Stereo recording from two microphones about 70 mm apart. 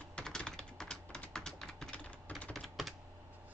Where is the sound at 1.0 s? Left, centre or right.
Left.